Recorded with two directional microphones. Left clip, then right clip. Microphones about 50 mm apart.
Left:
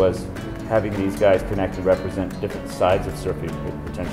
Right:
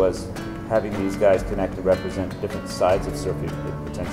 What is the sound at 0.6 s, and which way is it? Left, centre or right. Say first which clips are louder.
Speech: left 1 dB; centre.